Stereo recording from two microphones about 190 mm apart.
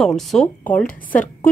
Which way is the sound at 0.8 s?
45° left (ahead or behind).